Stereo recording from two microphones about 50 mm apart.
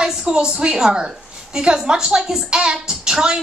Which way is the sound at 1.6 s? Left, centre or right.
Centre.